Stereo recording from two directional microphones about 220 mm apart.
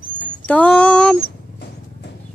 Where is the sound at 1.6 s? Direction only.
50° left (ahead or behind).